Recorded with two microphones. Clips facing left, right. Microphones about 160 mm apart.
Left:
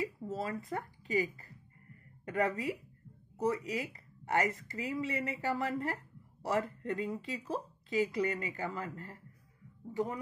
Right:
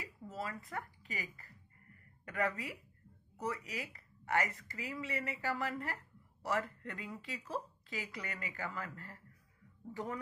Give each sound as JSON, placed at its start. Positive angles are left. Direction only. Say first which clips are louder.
{"t": 0.0, "sound": "speech", "louder": "left 7 dB", "side_deg": 25}